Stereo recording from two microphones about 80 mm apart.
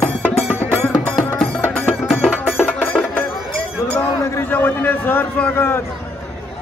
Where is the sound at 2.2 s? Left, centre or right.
Centre.